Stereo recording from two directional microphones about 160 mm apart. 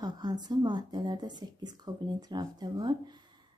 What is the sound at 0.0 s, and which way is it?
Speech, 25° right (ahead or behind).